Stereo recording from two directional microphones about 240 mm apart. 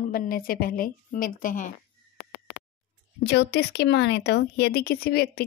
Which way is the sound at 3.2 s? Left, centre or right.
Left.